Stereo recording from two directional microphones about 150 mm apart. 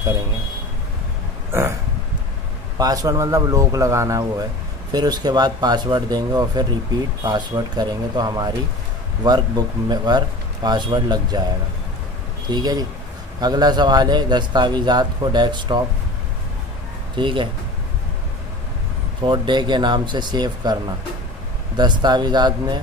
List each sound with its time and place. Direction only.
2.8 s a man's voice: 25° right (ahead or behind)
12.4 s a man's voice: 25° right (ahead or behind)
17.1 s speech: 35° right (ahead or behind)
19.2 s a man's voice: 30° right (ahead or behind)
21.7 s a man's voice: 30° right (ahead or behind)